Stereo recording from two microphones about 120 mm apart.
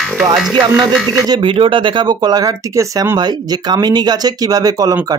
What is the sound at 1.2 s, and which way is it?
Speech, 40° right (ahead or behind).